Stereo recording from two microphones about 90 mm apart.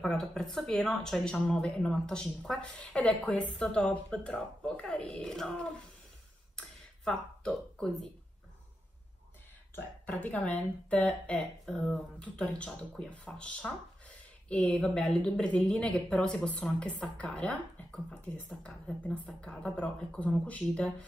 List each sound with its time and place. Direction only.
0.0 s speech: 5° left (ahead or behind)
6.5 s a sound: 10° left (ahead or behind)
10.0 s speech: 15° left (ahead or behind)